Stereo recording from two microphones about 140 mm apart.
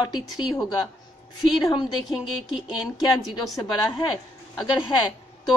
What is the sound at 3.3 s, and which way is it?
Speech, 30° left (ahead or behind).